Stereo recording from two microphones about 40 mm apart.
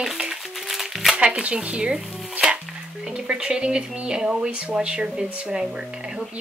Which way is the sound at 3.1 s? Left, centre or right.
Right.